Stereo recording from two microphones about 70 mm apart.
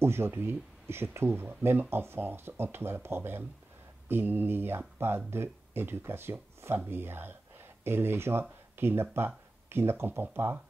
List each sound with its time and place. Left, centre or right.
0.0 s speech: right